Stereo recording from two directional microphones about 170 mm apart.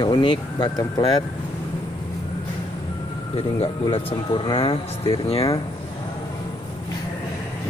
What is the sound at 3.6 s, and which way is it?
Speech, 35° left (ahead or behind).